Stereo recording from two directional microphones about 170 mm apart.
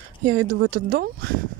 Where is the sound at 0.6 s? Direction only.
65° right (ahead or behind).